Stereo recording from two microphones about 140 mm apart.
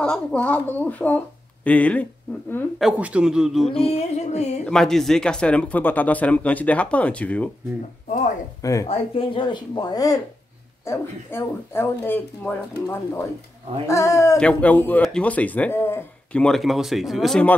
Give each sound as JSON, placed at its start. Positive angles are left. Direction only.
{"t": 0.0, "sound": "speech", "side_deg": 5}
{"t": 2.8, "sound": "speech", "side_deg": -5}
{"t": 3.8, "sound": "music", "side_deg": 50}
{"t": 4.6, "sound": "speech", "side_deg": 5}
{"t": 8.8, "sound": "speech", "side_deg": 45}
{"t": 14.4, "sound": "speech", "side_deg": 10}